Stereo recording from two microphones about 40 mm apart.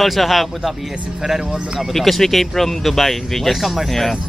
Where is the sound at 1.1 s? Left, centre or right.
Centre.